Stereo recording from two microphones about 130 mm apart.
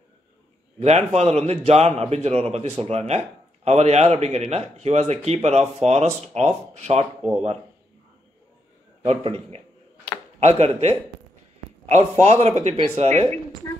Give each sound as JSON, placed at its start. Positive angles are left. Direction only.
{"t": 0.7, "sound": "speech", "side_deg": -60}
{"t": 9.0, "sound": "a man's voice", "side_deg": -55}
{"t": 12.2, "sound": "speech", "side_deg": -60}